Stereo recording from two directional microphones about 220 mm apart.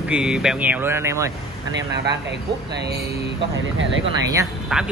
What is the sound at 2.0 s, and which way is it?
Speech, 50° right (ahead or behind).